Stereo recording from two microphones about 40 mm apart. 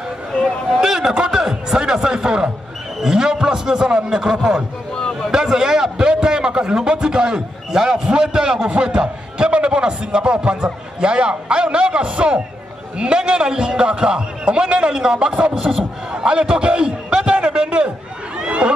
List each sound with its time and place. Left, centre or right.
0.7 s a man's voice: centre
15.5 s a man's voice: centre
18.4 s a sound: right